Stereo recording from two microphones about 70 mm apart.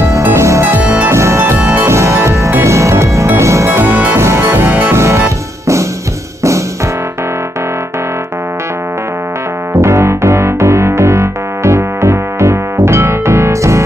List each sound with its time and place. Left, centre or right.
0.0 s music: right
4.2 s music: right
4.9 s music: right
9.8 s music: right